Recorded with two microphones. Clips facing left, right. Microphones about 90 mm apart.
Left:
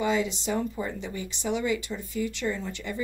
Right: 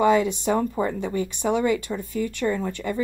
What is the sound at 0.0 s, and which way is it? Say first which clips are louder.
Speech: right 7 dB; 55° right (ahead or behind).